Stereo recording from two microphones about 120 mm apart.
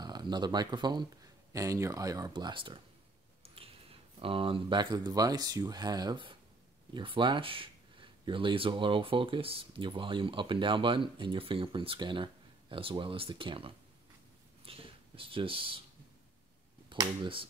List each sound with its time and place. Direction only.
0.0 s speech: 35° right (ahead or behind)
17.2 s speech: 45° right (ahead or behind)